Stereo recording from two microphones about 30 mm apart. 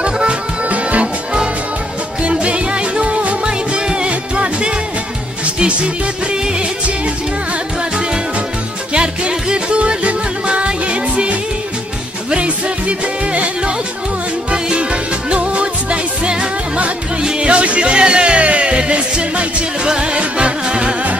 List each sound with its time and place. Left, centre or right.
0.0 s music: right
0.7 s music: right
2.4 s music: right
3.4 s music: right
8.9 s music: right
12.4 s music: right
14.5 s music: right